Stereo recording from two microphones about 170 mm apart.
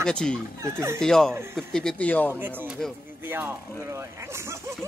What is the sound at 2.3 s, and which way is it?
Speech, 10° right (ahead or behind).